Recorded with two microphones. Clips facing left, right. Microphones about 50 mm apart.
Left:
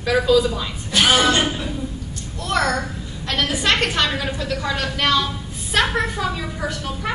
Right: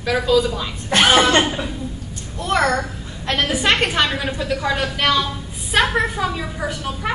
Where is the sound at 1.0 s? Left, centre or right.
Right.